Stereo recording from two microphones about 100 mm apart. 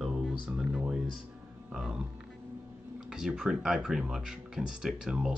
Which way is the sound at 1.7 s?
5° right (ahead or behind).